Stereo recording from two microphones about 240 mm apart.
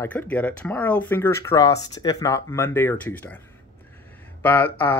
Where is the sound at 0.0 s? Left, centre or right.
Centre.